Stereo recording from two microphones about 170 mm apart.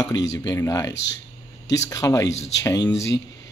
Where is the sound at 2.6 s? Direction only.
20° left (ahead or behind).